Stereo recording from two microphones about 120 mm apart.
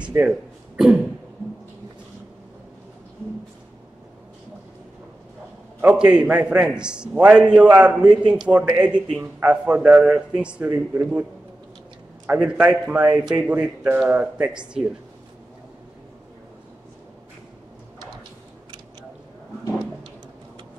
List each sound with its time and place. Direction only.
0.0 s a sound: 15° right (ahead or behind)
0.3 s speech: 5° right (ahead or behind)
5.8 s a man's voice: 10° right (ahead or behind)
12.3 s a man's voice: 10° right (ahead or behind)
13.1 s speech: 35° right (ahead or behind)
13.5 s a man's voice: 10° right (ahead or behind)